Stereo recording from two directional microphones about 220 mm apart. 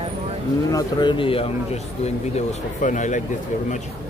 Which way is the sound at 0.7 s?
20° left (ahead or behind).